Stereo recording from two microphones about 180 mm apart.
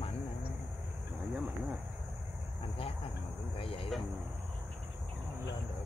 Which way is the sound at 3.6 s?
30° left (ahead or behind).